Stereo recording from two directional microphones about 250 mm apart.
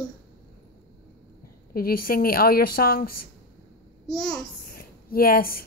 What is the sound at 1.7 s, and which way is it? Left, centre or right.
A woman's voice, left.